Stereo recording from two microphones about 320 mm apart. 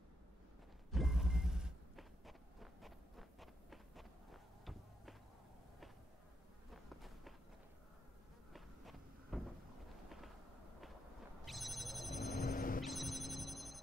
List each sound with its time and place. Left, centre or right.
0.9 s vehicle: centre
6.7 s walk: centre
8.5 s a sound: centre
11.4 s telephone bell ringing: centre
12.3 s vehicle: left
12.8 s telephone bell ringing: centre